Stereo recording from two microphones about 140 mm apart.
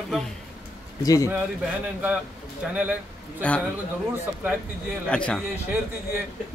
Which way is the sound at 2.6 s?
5° right (ahead or behind).